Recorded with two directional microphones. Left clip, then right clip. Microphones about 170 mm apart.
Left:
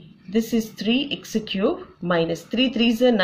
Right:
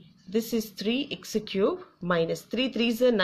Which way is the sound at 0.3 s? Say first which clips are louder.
Left 5 dB; 45° right (ahead or behind).